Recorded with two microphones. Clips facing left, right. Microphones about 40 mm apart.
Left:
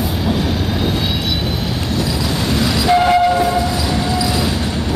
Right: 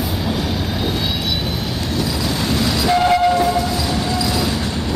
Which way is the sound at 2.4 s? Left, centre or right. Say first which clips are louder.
Left 2 dB; centre.